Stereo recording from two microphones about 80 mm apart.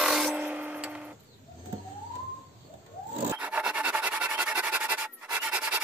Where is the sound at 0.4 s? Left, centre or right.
Centre.